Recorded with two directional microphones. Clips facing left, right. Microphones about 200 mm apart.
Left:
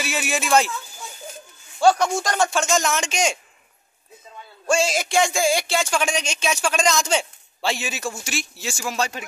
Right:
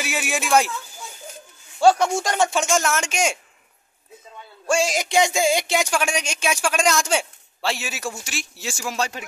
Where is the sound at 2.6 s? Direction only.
5° right (ahead or behind).